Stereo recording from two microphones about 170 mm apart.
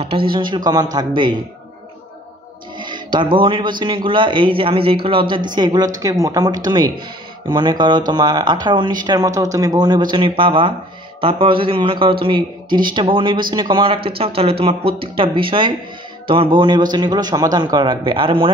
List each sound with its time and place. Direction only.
0.0 s speech: 30° right (ahead or behind)
2.8 s speech: 25° right (ahead or behind)